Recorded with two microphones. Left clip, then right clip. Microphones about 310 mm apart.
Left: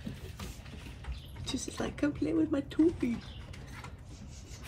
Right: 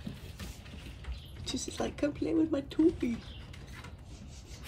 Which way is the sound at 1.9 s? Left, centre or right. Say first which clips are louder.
Left 1 dB; centre.